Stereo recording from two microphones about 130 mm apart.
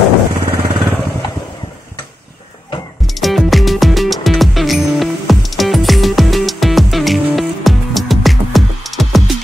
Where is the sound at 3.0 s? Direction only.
Centre (ahead or behind).